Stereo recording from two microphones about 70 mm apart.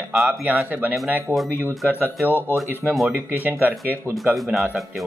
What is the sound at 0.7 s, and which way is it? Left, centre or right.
Speech, right.